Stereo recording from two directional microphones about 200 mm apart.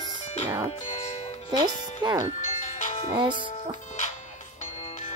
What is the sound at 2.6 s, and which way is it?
Music, 40° left (ahead or behind).